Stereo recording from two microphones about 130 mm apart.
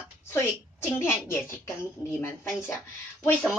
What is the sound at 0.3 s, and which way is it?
A woman's voice, 20° left (ahead or behind).